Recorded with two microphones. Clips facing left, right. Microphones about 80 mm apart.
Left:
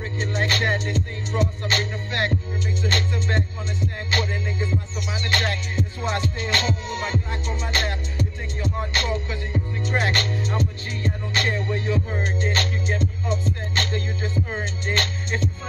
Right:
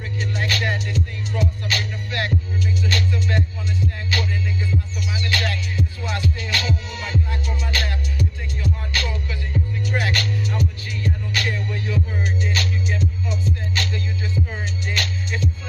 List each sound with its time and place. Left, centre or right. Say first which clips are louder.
0.2 s music: left 1 dB; left